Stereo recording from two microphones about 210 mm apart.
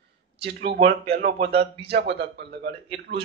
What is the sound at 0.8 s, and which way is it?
A man's voice, 45° right (ahead or behind).